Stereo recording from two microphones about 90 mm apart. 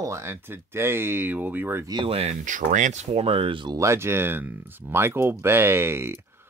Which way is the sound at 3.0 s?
90° right.